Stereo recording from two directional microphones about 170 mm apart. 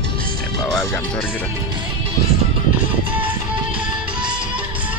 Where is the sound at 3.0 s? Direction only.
10° right (ahead or behind).